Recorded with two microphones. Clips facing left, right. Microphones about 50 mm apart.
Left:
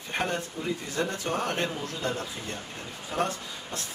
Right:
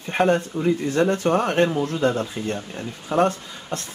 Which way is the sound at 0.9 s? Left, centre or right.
Right.